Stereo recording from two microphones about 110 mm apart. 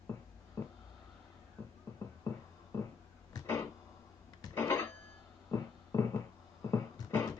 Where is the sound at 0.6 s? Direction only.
25° left (ahead or behind).